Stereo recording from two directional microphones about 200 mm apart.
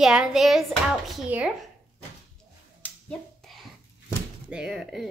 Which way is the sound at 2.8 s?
5° left (ahead or behind).